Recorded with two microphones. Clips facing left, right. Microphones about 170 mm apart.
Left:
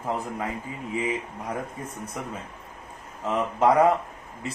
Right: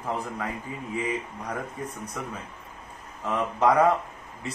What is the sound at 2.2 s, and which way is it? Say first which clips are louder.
A man's voice: left 2 dB; 15° left (ahead or behind).